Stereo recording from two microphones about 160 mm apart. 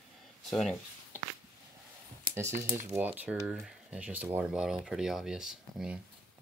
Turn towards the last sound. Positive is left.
turn(degrees=-5)  # may be behind; listen again after turning